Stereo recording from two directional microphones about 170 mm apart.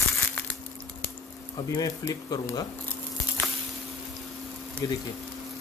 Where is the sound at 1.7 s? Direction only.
20° left (ahead or behind).